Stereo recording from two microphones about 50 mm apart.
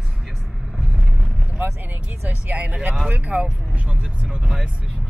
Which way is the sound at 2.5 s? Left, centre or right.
Right.